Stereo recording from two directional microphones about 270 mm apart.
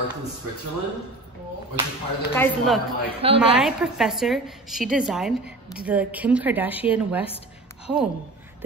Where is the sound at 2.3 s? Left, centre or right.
Centre.